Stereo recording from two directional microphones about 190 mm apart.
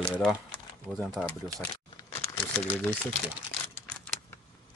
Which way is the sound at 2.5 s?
5° left (ahead or behind).